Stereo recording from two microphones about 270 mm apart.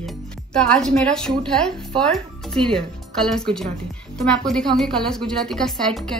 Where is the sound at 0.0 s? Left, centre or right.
Centre.